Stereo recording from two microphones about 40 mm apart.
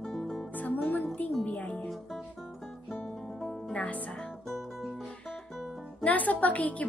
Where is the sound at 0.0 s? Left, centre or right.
Centre.